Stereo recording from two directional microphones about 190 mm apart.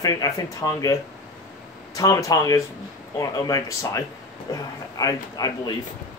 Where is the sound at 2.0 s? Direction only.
20° left (ahead or behind).